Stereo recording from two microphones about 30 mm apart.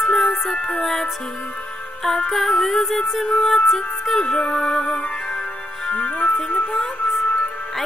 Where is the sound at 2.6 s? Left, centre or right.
Centre.